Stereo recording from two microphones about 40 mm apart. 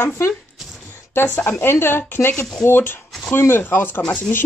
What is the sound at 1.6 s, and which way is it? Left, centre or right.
Speech, left.